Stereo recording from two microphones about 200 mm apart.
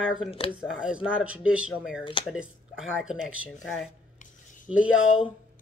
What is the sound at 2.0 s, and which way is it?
Speech, 25° left (ahead or behind).